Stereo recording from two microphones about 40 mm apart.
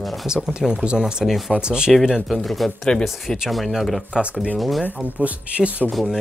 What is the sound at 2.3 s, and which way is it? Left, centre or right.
Speech, centre.